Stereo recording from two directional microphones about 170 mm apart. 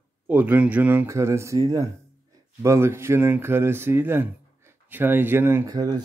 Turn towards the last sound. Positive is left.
turn(degrees=-20)  # may be behind; listen again after turning